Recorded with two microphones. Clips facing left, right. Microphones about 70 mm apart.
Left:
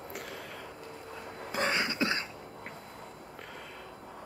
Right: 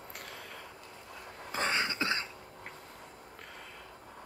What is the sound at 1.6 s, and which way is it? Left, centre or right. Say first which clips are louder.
Cough: left 1 dB; left.